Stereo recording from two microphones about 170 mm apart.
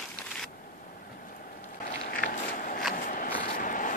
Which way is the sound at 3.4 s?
55° left (ahead or behind).